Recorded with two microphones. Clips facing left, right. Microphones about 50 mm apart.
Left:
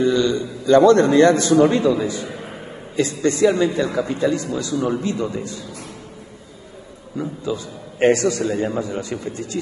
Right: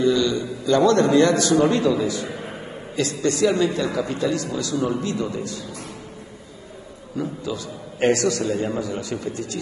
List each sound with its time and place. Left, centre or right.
0.0 s a man's voice: left
7.2 s a man's voice: left